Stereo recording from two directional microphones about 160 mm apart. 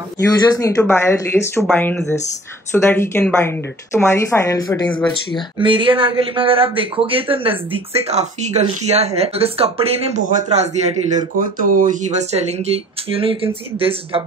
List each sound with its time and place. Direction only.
0.3 s a woman's voice: 20° left (ahead or behind)
4.8 s a woman's voice: 10° left (ahead or behind)
5.6 s speech: 30° right (ahead or behind)